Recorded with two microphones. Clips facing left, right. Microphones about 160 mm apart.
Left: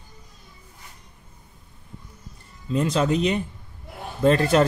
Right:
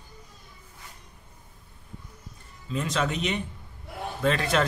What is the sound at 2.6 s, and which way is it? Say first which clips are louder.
Speech: left 6 dB; 35° left (ahead or behind).